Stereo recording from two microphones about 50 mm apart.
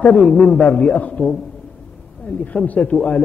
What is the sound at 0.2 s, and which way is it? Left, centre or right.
Speech, centre.